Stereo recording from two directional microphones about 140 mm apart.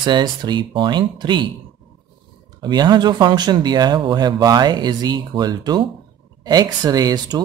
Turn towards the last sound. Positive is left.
turn(degrees=-30)  # may be behind; listen again after turning